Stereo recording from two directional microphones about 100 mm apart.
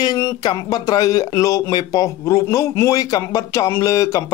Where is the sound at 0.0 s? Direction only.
40° left (ahead or behind).